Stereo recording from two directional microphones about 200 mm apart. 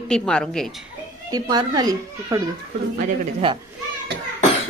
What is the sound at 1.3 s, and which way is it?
Speech, 20° right (ahead or behind).